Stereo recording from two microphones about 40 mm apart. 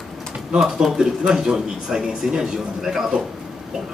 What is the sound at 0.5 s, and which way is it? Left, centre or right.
A man's voice, centre.